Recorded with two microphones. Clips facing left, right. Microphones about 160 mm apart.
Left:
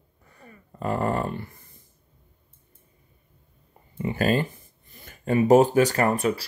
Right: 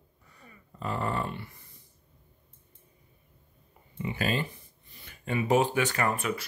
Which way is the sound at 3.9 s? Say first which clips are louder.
Left 7 dB; 45° left (ahead or behind).